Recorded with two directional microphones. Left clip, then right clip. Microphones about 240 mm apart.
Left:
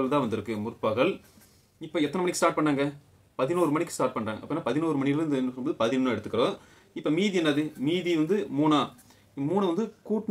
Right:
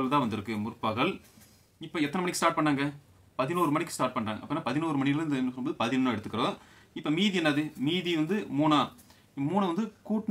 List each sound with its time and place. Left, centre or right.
0.0 s speech: right